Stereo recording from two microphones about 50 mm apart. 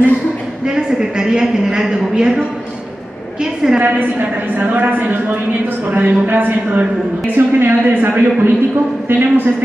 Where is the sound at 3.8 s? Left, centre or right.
Right.